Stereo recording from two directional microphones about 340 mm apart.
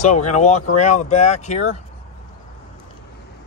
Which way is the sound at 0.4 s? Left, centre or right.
Centre.